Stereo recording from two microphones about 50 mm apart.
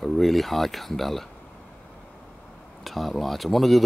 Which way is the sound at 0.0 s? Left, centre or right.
Centre.